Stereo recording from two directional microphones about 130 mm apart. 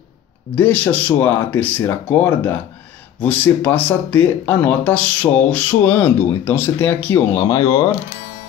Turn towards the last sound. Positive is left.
turn(degrees=30)  # may be behind; listen again after turning